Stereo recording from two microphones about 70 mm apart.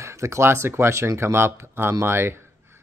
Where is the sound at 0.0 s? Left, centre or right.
Right.